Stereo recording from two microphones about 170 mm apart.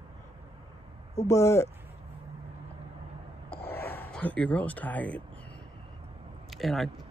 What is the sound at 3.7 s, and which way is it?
Speech, 15° left (ahead or behind).